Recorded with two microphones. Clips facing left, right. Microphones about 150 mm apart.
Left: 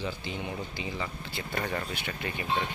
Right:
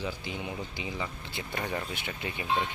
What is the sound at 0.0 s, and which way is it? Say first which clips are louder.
Speech: left 1 dB; 10° right (ahead or behind).